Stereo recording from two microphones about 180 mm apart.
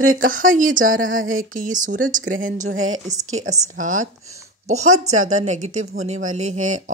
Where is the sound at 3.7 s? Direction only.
45° right (ahead or behind).